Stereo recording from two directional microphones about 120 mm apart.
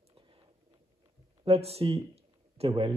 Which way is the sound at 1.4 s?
55° right (ahead or behind).